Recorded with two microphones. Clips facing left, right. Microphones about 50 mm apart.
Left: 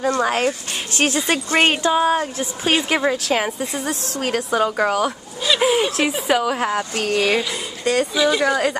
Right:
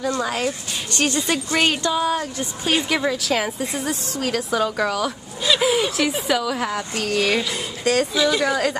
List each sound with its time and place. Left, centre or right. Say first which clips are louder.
0.0 s speech: left 4 dB; left
0.9 s a woman's voice: left 2 dB; left
4.2 s speech: left 2 dB; left
5.7 s speech: left 2 dB; centre
6.2 s a woman's voice: left 3 dB; left
7.2 s speech: left 1 dB; centre